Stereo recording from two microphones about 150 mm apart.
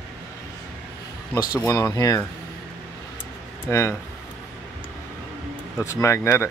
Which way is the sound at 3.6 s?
20° left (ahead or behind).